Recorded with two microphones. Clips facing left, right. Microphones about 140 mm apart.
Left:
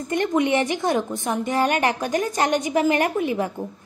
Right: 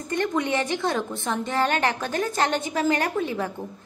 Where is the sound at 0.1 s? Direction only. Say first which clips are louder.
Left 4 dB; 15° left (ahead or behind).